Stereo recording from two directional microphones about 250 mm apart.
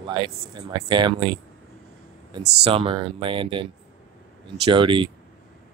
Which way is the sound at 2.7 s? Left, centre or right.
Right.